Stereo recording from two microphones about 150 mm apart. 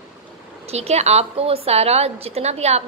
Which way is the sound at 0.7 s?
45° right (ahead or behind).